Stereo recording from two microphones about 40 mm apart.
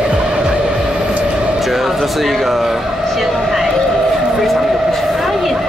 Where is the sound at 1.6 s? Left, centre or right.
Centre.